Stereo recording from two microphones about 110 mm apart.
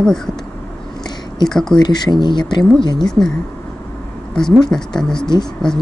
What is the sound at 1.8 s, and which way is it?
Speech, 40° left (ahead or behind).